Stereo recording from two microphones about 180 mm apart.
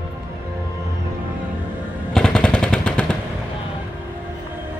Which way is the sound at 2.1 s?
5° left (ahead or behind).